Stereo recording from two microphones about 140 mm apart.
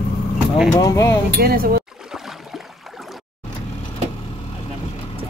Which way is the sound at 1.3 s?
90° right.